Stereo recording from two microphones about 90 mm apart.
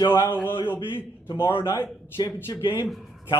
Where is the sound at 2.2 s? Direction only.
50° left (ahead or behind).